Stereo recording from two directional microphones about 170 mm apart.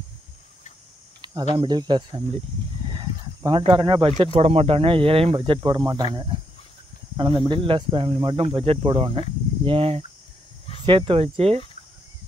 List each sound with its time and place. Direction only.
1.5 s speech: 25° right (ahead or behind)